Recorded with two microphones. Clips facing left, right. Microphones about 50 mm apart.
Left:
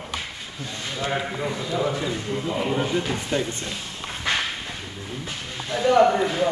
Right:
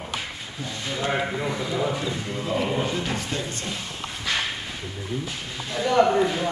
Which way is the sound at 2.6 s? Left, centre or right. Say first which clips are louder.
Left 2 dB; centre.